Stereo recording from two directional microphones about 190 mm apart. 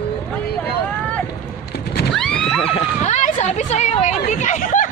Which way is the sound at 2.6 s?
35° left (ahead or behind).